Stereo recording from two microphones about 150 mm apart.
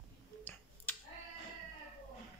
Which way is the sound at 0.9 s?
10° left (ahead or behind).